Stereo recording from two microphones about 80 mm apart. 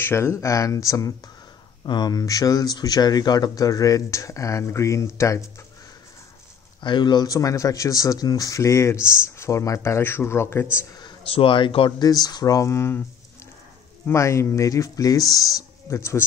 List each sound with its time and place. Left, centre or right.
0.0 s speech: left
1.9 s speech: left
6.8 s speech: left
7.2 s speech: left
8.9 s speech: centre
9.4 s speech: left
10.9 s speech: left
12.0 s speech: left
14.0 s speech: left
16.0 s speech: left